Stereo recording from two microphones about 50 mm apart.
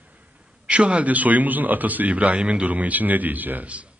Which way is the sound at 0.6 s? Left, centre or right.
Right.